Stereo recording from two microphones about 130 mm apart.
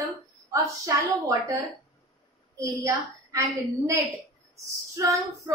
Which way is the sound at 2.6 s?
25° right (ahead or behind).